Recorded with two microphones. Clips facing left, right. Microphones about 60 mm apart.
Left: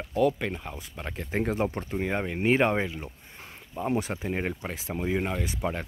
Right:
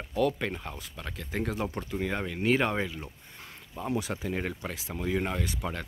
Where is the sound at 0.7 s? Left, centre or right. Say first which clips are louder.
Left 3 dB; left.